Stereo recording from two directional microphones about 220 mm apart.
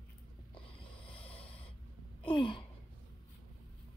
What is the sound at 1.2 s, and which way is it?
Snort, 5° left (ahead or behind).